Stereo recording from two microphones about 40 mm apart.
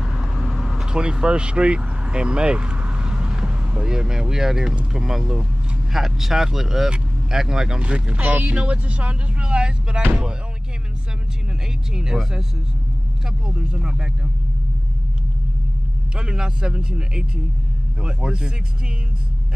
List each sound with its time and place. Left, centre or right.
0.0 s vehicle: centre
0.8 s speech: right
7.8 s speech: right
11.9 s speech: centre
13.6 s speech: right
16.2 s speech: right